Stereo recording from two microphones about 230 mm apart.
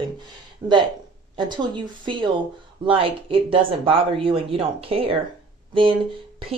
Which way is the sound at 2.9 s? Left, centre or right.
Right.